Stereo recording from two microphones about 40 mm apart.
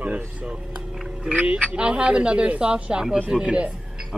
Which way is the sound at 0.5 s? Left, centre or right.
Centre.